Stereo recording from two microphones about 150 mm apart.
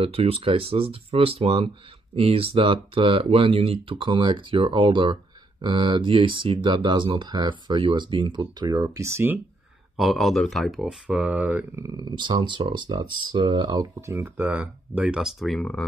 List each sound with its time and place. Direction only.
0.0 s speech: 40° right (ahead or behind); by 9.4 s 15° right (ahead or behind)
9.9 s speech: centre (ahead or behind); by 14.1 s 25° right (ahead or behind)
14.1 s speech: 15° right (ahead or behind)